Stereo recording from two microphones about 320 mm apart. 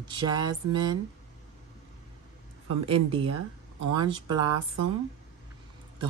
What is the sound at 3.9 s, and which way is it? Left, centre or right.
Speech, centre.